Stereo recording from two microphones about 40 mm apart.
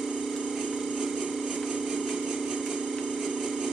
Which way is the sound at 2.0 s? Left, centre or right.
Centre.